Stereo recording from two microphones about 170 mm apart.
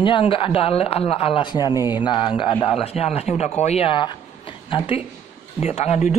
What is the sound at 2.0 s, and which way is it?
Speech, 30° left (ahead or behind).